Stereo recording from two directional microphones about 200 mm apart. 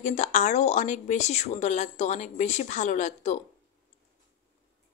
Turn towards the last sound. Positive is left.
turn(degrees=35)  # may be behind; listen again after turning